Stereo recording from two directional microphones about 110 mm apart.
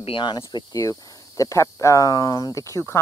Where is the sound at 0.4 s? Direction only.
35° left (ahead or behind).